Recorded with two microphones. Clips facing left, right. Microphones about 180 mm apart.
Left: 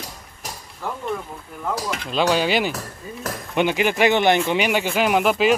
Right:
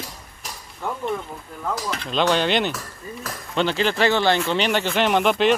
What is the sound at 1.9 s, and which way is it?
Speech, 10° left (ahead or behind).